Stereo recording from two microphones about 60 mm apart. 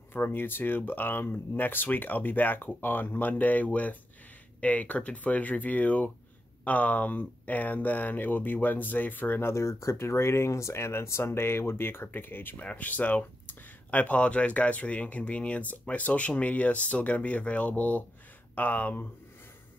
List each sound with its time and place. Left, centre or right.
0.1 s speech: left
9.5 s speech: left